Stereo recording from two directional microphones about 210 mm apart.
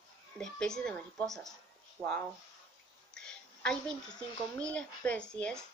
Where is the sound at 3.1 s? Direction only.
5° left (ahead or behind).